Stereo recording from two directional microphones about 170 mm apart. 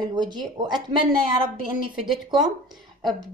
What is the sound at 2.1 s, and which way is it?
Speech, 25° right (ahead or behind).